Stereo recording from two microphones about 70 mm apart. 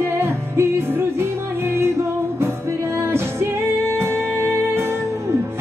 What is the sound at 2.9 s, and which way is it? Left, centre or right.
Music, right.